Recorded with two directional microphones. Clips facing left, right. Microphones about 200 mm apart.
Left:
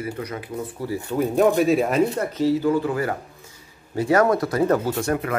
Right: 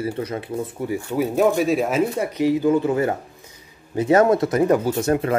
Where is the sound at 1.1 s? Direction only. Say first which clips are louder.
Left 1 dB; centre (ahead or behind).